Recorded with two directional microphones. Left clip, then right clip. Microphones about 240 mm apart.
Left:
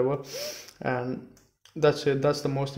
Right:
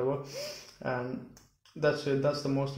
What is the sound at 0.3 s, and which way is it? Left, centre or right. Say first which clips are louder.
Speech: left 4 dB; left.